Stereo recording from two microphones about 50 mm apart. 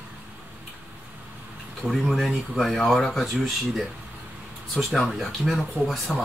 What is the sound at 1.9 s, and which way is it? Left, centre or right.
Speech, centre.